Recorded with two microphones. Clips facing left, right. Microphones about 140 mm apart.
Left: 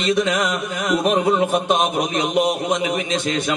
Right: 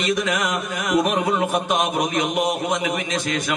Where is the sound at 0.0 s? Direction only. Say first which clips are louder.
Left 3 dB; 25° left (ahead or behind).